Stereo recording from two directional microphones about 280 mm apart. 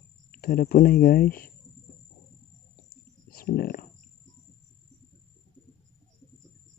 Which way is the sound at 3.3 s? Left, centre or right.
Left.